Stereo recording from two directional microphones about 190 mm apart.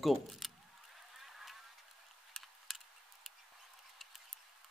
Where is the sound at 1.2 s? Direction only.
Centre (ahead or behind).